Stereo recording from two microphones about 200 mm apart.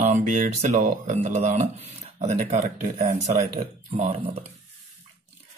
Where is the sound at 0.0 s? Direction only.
35° right (ahead or behind).